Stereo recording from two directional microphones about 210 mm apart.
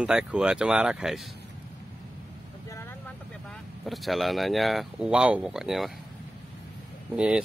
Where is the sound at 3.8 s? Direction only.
Centre (ahead or behind).